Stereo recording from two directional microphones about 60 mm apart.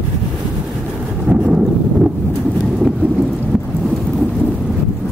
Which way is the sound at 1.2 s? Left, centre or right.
Centre.